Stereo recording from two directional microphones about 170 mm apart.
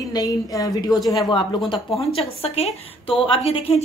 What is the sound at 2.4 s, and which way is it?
A woman's voice, 35° left (ahead or behind).